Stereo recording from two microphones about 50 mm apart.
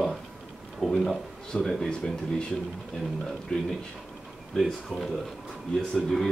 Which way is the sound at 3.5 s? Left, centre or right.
Centre.